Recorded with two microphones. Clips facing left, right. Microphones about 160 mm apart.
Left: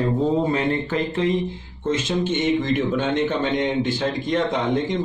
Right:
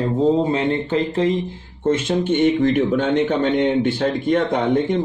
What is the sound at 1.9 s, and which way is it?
Speech, 60° right (ahead or behind).